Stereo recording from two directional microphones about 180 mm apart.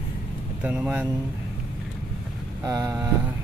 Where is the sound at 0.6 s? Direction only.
5° right (ahead or behind).